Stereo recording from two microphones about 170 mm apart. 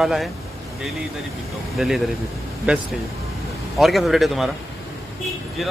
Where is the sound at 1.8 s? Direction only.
Centre (ahead or behind).